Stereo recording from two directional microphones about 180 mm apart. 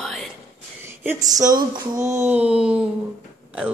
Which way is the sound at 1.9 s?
40° right (ahead or behind).